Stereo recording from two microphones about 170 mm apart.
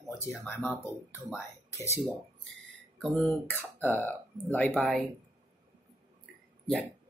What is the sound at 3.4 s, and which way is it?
Speech, 10° left (ahead or behind).